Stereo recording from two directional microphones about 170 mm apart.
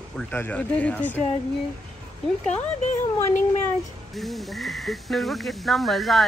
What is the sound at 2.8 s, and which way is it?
Speech, 45° left (ahead or behind).